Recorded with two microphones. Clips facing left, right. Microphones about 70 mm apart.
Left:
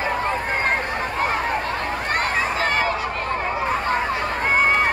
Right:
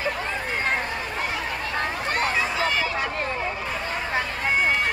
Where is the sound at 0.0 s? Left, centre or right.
Left.